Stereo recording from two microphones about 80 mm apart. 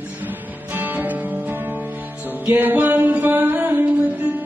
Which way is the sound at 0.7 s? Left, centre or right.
Right.